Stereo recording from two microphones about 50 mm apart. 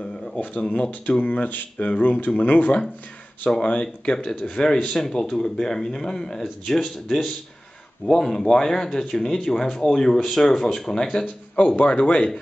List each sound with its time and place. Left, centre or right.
0.7 s speech: left
3.4 s speech: centre
6.4 s speech: centre
8.2 s speech: centre
11.5 s speech: left